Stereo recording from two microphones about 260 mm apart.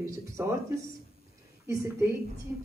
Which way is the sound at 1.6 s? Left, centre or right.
Centre.